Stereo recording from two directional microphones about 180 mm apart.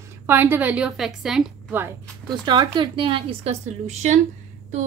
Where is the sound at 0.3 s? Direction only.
10° right (ahead or behind).